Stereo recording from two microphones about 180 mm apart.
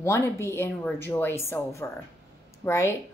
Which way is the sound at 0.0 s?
15° left (ahead or behind).